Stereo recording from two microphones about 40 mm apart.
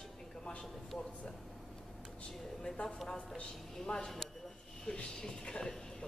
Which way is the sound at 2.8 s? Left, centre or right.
Centre.